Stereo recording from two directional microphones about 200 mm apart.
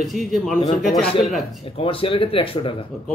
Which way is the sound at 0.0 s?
Centre (ahead or behind).